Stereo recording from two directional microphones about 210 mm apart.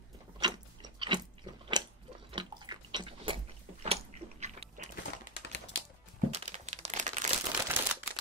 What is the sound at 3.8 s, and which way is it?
Biting, 30° right (ahead or behind).